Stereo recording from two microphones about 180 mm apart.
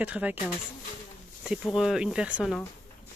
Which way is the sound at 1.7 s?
5° right (ahead or behind).